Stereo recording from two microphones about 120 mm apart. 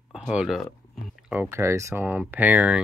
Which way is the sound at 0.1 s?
5° right (ahead or behind).